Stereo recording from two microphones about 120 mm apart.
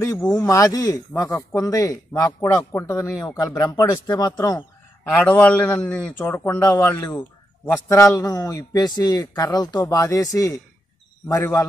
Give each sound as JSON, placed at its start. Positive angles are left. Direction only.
{"t": 0.2, "sound": "a man's voice", "side_deg": 25}
{"t": 4.4, "sound": "a sound", "side_deg": 25}
{"t": 5.2, "sound": "a man's voice", "side_deg": 10}
{"t": 6.1, "sound": "a man's voice", "side_deg": 20}